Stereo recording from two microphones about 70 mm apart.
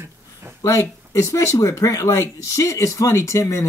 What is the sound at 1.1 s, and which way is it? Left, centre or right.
Speech, left.